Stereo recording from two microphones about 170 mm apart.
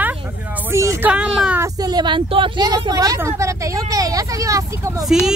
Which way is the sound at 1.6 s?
20° right (ahead or behind).